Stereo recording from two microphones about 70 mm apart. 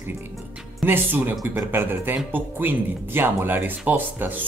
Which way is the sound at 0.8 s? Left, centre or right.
Right.